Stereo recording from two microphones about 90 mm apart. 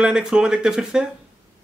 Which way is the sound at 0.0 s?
5° right (ahead or behind).